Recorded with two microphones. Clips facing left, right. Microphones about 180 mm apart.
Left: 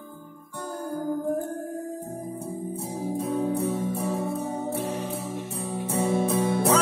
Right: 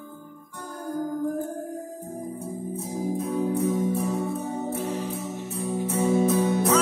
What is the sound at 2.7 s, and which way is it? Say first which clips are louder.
Music: right 3 dB; 30° left (ahead or behind).